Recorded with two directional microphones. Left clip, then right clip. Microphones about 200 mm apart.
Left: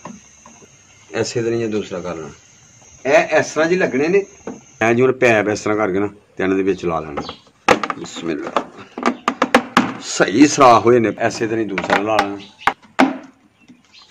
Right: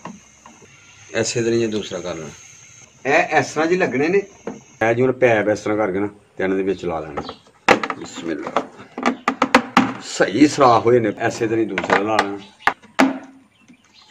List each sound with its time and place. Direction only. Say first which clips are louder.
1.1 s speech: even; 35° left (ahead or behind)
3.0 s speech: left 3 dB; 20° left (ahead or behind)
4.7 s a man's voice: left 2 dB; 45° left (ahead or behind)
7.2 s a sound: left 2 dB; centre (ahead or behind)
8.0 s speech: left 3 dB; 40° left (ahead or behind)
8.9 s music: left 1 dB; 5° left (ahead or behind)
9.9 s a man's voice: left 3 dB; 40° left (ahead or behind)
11.2 s speech: even; 35° left (ahead or behind)
12.2 s a sound: left 1 dB; centre (ahead or behind)